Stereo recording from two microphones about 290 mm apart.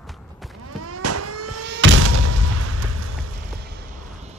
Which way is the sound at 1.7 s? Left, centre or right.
Right.